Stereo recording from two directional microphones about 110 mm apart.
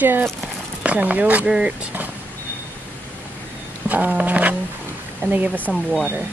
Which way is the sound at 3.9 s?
15° right (ahead or behind).